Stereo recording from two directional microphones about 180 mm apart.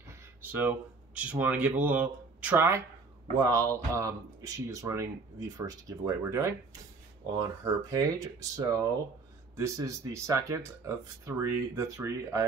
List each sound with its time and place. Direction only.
0.1 s speech: 10° right (ahead or behind)